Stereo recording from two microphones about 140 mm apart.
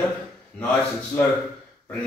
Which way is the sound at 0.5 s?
10° left (ahead or behind).